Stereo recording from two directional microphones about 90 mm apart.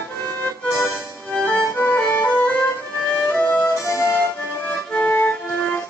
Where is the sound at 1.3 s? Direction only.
15° left (ahead or behind).